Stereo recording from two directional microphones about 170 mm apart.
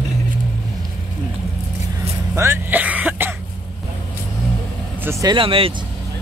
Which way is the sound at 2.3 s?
15° right (ahead or behind).